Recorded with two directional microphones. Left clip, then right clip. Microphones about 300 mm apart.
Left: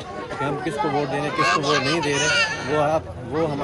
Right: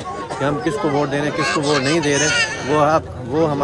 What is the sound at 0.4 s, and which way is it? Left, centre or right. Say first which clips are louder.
Speech: right 4 dB; centre.